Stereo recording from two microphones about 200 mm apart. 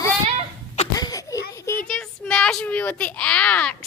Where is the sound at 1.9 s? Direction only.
5° left (ahead or behind).